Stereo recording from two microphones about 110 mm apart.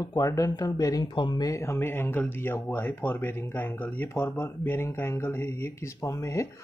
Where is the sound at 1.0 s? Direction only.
45° left (ahead or behind).